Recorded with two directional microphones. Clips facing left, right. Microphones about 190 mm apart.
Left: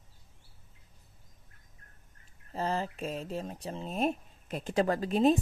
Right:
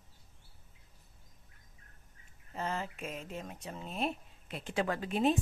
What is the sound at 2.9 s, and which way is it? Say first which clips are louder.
Speech: left 6 dB; 35° left (ahead or behind).